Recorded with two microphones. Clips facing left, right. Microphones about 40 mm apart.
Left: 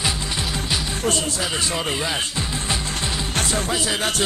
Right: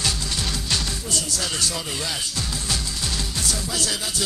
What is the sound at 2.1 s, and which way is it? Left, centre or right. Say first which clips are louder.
Music: left 4 dB; left.